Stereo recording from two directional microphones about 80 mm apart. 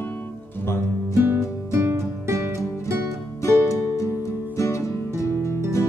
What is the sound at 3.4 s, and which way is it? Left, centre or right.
Music, left.